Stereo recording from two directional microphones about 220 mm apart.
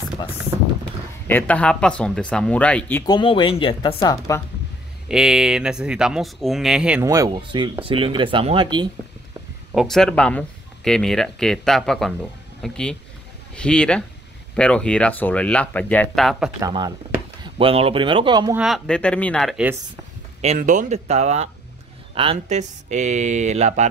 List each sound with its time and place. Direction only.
1.2 s speech: 5° left (ahead or behind)
3.1 s speech: 20° left (ahead or behind)
5.0 s speech: centre (ahead or behind); by 8.8 s 20° right (ahead or behind)
9.8 s speech: centre (ahead or behind)
16.6 s speech: 15° right (ahead or behind)
18.6 s speech: centre (ahead or behind)
20.4 s speech: 35° right (ahead or behind)